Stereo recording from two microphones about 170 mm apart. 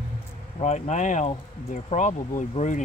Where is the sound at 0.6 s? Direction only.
45° left (ahead or behind).